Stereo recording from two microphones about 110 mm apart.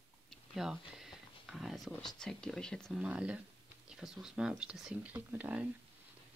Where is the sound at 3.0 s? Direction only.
10° right (ahead or behind).